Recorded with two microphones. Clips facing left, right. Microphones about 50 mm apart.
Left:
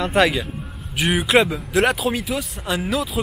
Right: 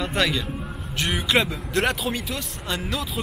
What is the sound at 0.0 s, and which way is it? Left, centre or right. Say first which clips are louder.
Speech: left 6 dB; centre.